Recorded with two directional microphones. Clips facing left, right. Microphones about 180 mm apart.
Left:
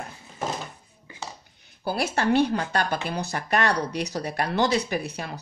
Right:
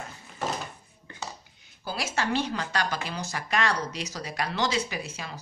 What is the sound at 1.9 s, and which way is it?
Speech, 60° left (ahead or behind).